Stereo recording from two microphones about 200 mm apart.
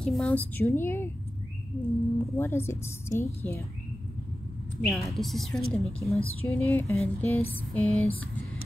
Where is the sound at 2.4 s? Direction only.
10° left (ahead or behind).